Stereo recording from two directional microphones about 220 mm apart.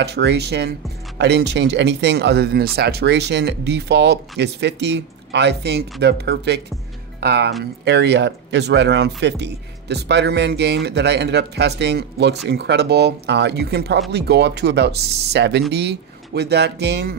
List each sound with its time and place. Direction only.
0.0 s speech: 50° right (ahead or behind)